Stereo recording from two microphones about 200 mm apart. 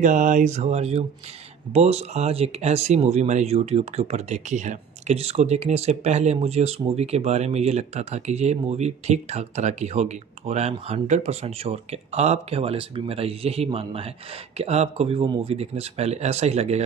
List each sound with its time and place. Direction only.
0.0 s speech: 40° right (ahead or behind)